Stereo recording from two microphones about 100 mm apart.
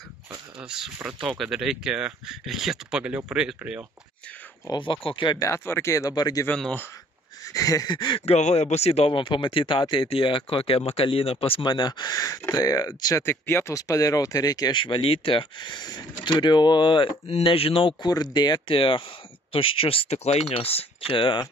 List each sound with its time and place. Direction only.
0.6 s speech: 5° right (ahead or behind)
4.6 s speech: 50° left (ahead or behind)
5.4 s speech: 30° left (ahead or behind)
6.5 s speech: 10° left (ahead or behind)
7.4 s speech: 35° left (ahead or behind)
8.3 s speech: 90° left
9.2 s speech: 55° left (ahead or behind); by 11.6 s 75° left (ahead or behind)
11.6 s speech: 45° left (ahead or behind)
13.2 s speech: 25° left (ahead or behind); by 17.1 s 55° left (ahead or behind)
17.3 s speech: 70° left (ahead or behind)
18.0 s speech: 45° left (ahead or behind)
18.8 s speech: 60° left (ahead or behind)